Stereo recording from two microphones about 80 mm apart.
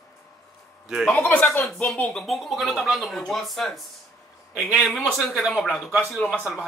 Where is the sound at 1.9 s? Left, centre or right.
Centre.